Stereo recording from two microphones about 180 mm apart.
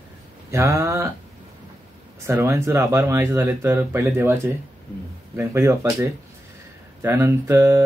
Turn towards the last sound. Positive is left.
turn(degrees=-15)  # may be behind; listen again after turning